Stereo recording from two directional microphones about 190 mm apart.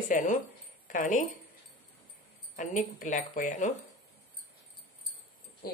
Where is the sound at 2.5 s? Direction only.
40° left (ahead or behind).